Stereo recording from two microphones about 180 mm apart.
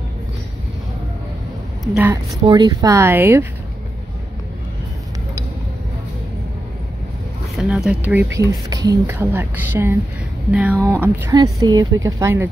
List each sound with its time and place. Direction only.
2.4 s speech: 25° right (ahead or behind)
7.5 s speech: centre (ahead or behind)